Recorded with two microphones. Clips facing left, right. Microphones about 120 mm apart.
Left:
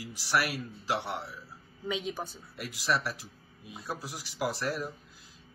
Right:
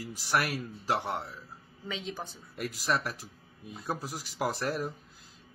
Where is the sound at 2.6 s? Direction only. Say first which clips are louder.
Even; 45° right (ahead or behind).